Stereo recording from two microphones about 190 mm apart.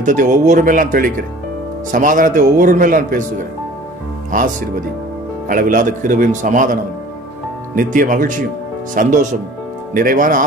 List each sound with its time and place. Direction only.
0.0 s a man's voice: 45° right (ahead or behind)
4.3 s a man's voice: 45° right (ahead or behind)